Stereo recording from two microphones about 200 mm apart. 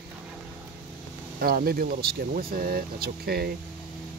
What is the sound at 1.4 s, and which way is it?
Speech, 50° right (ahead or behind).